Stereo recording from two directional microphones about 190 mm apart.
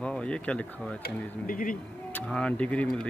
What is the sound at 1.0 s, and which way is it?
Speech, 45° left (ahead or behind).